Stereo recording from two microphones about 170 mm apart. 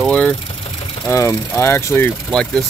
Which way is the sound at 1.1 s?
15° left (ahead or behind).